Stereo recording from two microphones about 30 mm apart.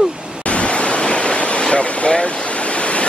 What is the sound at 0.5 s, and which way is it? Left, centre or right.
Pink noise, left.